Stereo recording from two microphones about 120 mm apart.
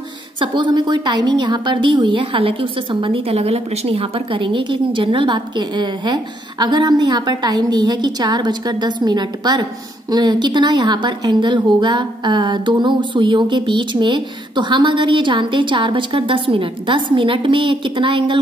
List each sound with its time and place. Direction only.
0.4 s a woman's voice: 40° right (ahead or behind)